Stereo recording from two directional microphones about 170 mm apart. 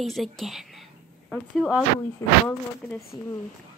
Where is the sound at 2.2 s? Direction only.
15° left (ahead or behind).